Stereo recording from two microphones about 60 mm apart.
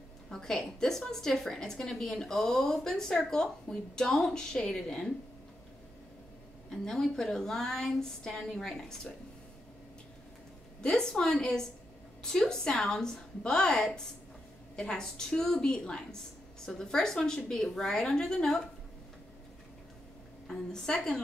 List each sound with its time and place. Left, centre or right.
0.3 s a woman's voice: centre
6.7 s a woman's voice: centre
10.8 s a woman's voice: centre
20.4 s a woman's voice: centre